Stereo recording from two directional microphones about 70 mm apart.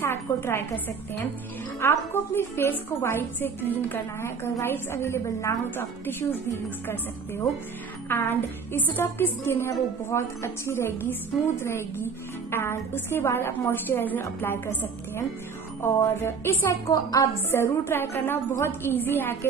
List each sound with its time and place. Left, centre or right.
0.0 s a woman's voice: left
5.8 s a woman's voice: left
8.1 s a woman's voice: left
12.4 s a woman's voice: left
16.9 s a woman's voice: left
17.5 s a woman's voice: left